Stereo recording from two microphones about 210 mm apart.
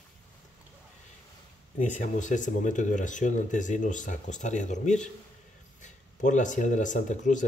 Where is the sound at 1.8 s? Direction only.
35° left (ahead or behind).